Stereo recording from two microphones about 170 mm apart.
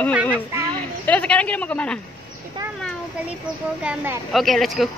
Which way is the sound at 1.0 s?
10° left (ahead or behind).